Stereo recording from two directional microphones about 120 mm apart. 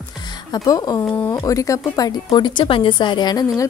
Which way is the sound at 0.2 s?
35° left (ahead or behind).